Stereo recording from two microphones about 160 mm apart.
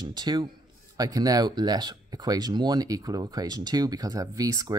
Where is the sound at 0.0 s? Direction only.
25° right (ahead or behind).